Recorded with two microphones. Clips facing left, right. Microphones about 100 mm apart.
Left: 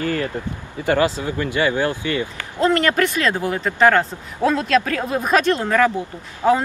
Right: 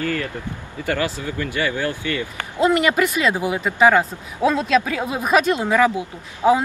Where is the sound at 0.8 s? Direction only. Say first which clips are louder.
Left 5 dB; 25° left (ahead or behind).